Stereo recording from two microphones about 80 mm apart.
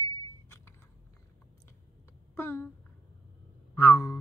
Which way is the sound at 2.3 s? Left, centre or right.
Left.